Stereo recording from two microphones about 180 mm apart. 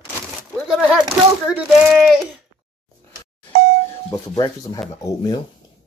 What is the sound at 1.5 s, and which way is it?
Speech, centre (ahead or behind).